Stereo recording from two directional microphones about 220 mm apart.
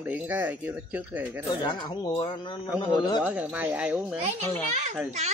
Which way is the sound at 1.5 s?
20° left (ahead or behind).